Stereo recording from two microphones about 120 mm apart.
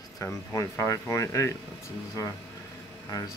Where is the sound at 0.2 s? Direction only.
25° left (ahead or behind).